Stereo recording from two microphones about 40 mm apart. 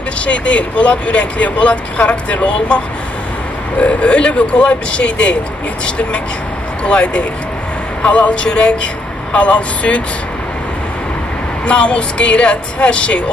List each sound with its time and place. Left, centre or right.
0.2 s speech: left
6.8 s a woman's voice: left
11.6 s a woman's voice: left